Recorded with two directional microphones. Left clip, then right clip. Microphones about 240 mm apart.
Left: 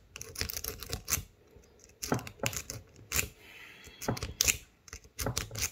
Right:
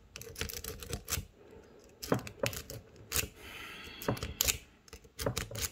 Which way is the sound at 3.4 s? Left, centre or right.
Right.